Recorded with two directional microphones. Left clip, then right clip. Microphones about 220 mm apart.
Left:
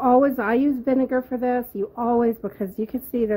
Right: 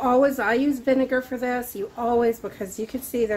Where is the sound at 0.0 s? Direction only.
45° left (ahead or behind).